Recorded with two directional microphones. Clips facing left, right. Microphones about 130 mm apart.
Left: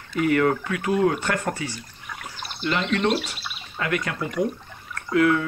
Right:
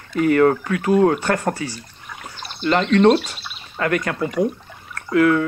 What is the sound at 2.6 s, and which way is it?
Speech, 45° right (ahead or behind).